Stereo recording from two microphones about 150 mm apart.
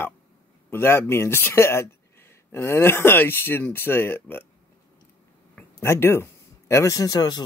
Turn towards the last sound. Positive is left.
turn(degrees=25)  # may be behind; listen again after turning